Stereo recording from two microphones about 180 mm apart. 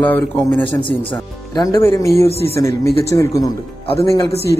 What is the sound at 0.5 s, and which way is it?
Speech, 10° left (ahead or behind).